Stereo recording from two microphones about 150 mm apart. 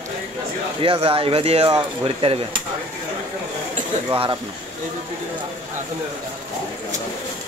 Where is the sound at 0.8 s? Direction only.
40° right (ahead or behind).